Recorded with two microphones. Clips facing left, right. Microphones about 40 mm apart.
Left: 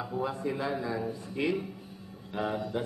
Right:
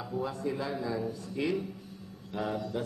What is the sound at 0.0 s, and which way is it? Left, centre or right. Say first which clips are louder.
Speech: left 1 dB; left.